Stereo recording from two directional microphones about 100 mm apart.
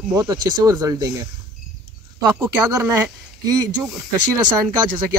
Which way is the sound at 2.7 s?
35° right (ahead or behind).